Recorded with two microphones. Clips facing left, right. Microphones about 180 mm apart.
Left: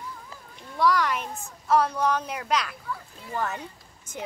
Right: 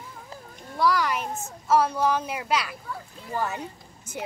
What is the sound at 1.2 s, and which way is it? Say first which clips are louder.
Speech: right 4 dB; 40° right (ahead or behind).